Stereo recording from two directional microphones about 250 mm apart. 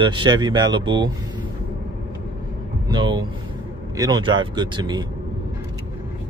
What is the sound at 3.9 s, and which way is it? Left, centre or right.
Speech, centre.